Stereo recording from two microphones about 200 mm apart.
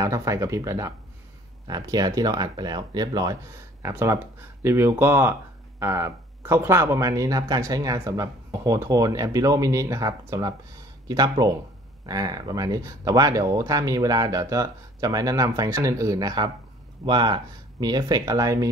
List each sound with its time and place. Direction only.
0.0 s speech: 15° right (ahead or behind)